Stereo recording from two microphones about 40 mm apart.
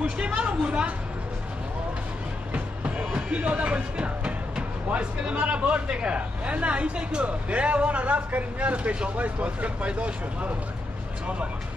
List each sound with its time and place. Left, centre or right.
0.2 s a sound: right
2.5 s music: right
3.3 s speech: right
5.7 s speech: right